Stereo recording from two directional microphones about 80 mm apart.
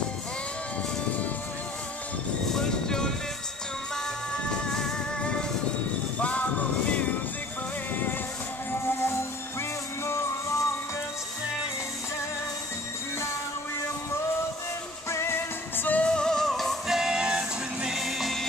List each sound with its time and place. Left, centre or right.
2.5 s vehicle: centre
4.5 s music: centre
10.0 s music: left
15.0 s music: left; by 18.4 s centre